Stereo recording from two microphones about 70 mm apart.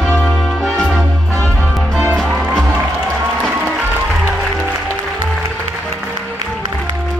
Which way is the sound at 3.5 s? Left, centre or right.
Right.